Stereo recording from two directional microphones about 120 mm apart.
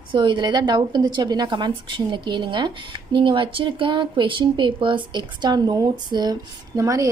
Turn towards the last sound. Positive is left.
turn(degrees=-30)  # may be behind; listen again after turning